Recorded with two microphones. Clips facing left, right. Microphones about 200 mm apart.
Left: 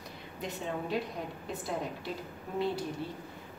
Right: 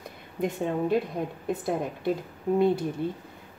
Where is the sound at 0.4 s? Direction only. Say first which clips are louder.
Right 10 dB; 50° right (ahead or behind).